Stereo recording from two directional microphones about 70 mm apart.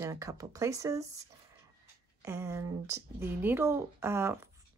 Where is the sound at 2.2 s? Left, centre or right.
Right.